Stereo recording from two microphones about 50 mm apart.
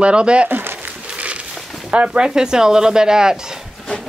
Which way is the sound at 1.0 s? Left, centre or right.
Right.